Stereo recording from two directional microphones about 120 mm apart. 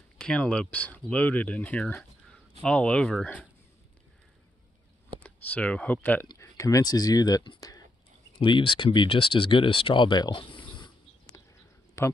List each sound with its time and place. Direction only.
0.2 s speech: 10° left (ahead or behind)
5.2 s speech: 10° left (ahead or behind)
6.3 s speech: 25° left (ahead or behind)
8.4 s speech: 45° left (ahead or behind)
12.0 s a man's voice: 25° left (ahead or behind)